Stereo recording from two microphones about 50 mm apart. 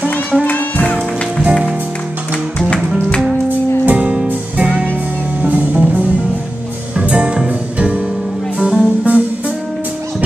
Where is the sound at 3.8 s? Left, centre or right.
Right.